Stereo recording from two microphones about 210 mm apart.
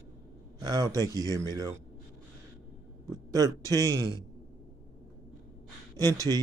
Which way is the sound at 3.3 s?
15° right (ahead or behind).